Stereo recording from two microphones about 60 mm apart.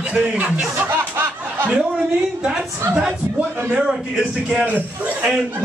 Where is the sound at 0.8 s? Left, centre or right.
Right.